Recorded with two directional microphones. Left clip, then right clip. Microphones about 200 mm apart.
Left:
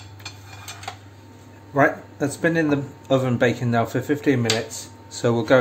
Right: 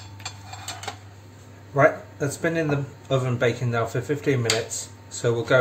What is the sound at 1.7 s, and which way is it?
Speech, 35° left (ahead or behind).